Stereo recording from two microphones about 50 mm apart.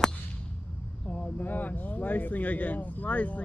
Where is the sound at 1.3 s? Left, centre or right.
Left.